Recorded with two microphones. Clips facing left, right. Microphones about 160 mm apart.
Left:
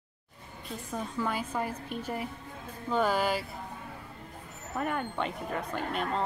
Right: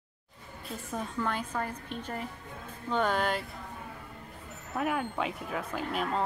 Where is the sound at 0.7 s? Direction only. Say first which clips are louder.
Even; 5° left (ahead or behind).